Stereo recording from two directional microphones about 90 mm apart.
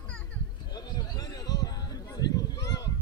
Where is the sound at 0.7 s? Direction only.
50° left (ahead or behind).